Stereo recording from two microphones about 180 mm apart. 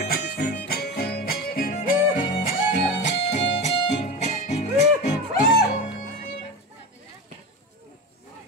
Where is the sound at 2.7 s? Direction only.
40° left (ahead or behind).